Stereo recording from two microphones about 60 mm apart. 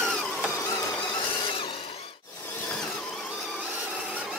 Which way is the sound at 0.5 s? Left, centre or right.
Left.